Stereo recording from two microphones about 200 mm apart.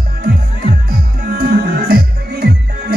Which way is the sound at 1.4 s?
50° right (ahead or behind).